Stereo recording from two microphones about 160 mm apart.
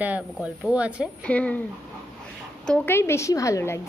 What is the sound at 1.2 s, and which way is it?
Speech, 10° left (ahead or behind).